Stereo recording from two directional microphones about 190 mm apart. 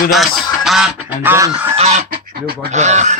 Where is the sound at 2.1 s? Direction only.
50° right (ahead or behind).